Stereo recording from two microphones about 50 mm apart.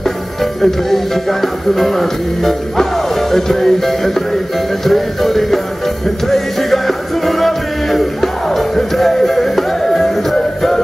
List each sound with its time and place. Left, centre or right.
0.4 s music: centre